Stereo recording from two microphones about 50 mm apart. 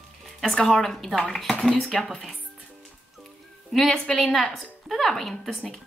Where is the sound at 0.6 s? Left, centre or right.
Centre.